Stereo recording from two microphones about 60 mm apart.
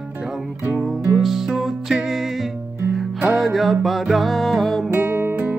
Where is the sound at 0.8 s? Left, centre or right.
Centre.